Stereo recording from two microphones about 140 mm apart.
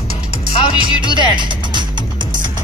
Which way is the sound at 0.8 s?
35° right (ahead or behind).